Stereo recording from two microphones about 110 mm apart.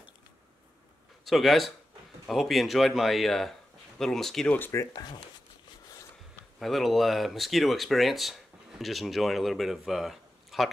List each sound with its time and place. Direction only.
1.2 s speech: centre (ahead or behind)
4.6 s speech: 20° left (ahead or behind)
6.6 s speech: centre (ahead or behind)